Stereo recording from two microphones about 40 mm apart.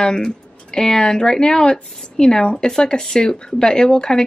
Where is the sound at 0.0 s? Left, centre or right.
Centre.